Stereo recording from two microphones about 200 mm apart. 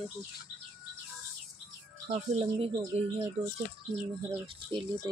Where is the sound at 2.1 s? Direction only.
30° right (ahead or behind).